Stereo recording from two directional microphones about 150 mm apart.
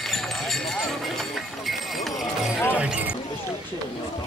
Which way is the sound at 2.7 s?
10° right (ahead or behind).